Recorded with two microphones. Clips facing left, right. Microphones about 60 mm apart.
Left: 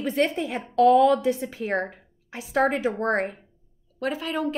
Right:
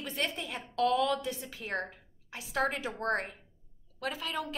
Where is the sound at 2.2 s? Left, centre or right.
Centre.